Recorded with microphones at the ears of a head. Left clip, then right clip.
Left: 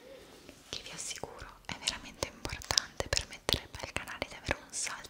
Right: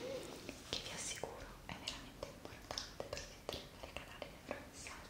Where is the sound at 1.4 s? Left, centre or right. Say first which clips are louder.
Left 10 dB; left.